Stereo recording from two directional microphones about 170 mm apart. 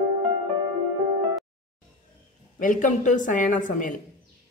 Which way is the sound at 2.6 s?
50° left (ahead or behind).